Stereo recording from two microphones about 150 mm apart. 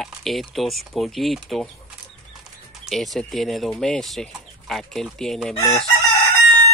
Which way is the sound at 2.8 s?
Centre (ahead or behind).